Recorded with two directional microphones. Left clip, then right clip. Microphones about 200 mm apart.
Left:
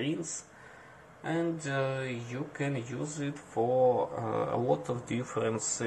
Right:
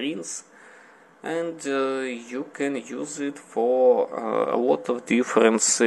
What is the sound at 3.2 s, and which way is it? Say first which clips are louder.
Speech: right 8 dB; 40° right (ahead or behind).